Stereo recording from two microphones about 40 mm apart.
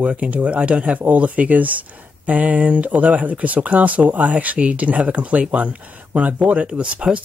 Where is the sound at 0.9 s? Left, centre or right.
Right.